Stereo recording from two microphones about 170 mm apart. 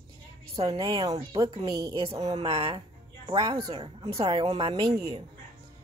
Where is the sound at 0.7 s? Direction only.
30° right (ahead or behind).